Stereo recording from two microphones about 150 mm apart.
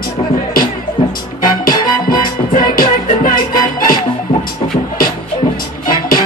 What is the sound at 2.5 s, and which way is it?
Music, 65° left (ahead or behind).